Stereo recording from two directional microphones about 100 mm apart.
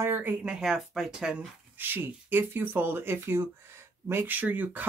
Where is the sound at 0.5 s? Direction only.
5° right (ahead or behind).